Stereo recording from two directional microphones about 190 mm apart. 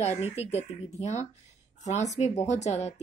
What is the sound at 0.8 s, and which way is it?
A woman's voice, 35° left (ahead or behind).